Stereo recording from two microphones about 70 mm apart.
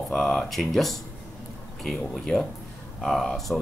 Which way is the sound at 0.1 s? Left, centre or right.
Centre.